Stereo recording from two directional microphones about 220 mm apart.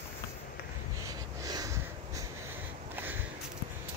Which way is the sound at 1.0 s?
15° right (ahead or behind).